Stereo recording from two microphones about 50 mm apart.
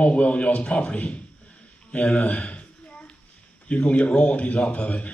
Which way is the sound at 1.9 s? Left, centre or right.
Left.